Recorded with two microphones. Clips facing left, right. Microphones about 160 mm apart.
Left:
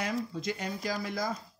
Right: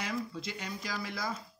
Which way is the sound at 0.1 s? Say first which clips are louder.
Left 4 dB; 45° left (ahead or behind).